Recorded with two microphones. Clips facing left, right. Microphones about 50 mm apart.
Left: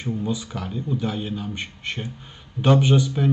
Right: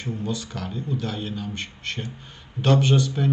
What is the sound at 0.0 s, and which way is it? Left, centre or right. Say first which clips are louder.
Speech: left 3 dB; centre.